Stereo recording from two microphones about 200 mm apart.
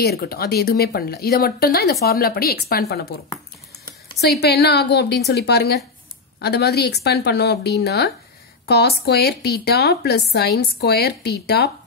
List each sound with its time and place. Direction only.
0.0 s speech: 50° left (ahead or behind)
4.2 s speech: 55° left (ahead or behind)